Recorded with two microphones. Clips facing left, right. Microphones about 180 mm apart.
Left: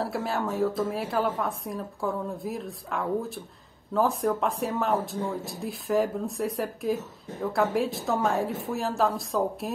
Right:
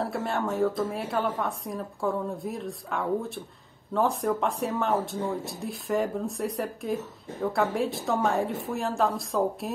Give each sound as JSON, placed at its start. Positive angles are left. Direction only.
{"t": 0.0, "sound": "a woman's voice", "side_deg": 0}